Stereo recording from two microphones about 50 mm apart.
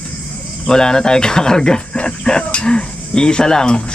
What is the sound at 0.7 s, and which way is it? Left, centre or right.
Speech, centre.